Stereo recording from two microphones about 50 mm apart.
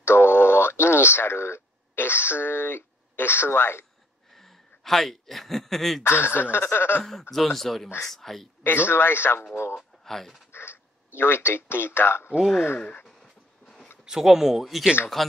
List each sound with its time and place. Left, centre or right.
0.0 s radio: left
4.3 s speech: centre
6.0 s speech: left
7.1 s speech: centre
8.6 s speech: left
9.8 s speech: centre
10.5 s a sound: left
11.7 s speech: left
13.0 s train: centre
14.0 s speech: centre